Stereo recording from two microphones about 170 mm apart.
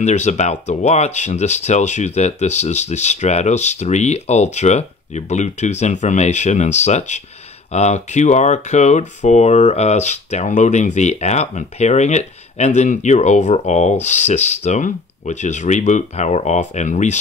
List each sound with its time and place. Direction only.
0.0 s speech: 45° left (ahead or behind)